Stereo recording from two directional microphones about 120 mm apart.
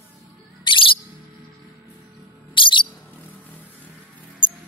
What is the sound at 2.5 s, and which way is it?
Music, 45° left (ahead or behind).